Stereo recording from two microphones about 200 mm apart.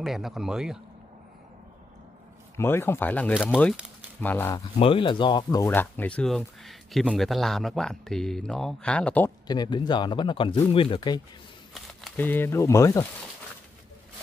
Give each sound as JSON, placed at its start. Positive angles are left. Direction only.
{"t": 0.0, "sound": "speech", "side_deg": 0}
{"t": 2.5, "sound": "speech", "side_deg": 10}
{"t": 4.7, "sound": "speech", "side_deg": 25}
{"t": 9.5, "sound": "speech", "side_deg": 20}
{"t": 11.7, "sound": "speech", "side_deg": 0}